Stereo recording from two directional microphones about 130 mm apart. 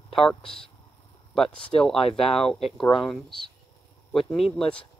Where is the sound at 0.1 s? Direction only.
Centre (ahead or behind).